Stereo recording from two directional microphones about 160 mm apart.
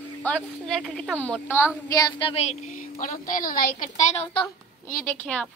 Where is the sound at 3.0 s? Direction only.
60° left (ahead or behind).